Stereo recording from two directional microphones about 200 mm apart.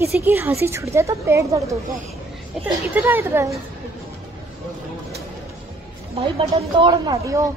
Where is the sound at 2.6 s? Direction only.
Centre (ahead or behind).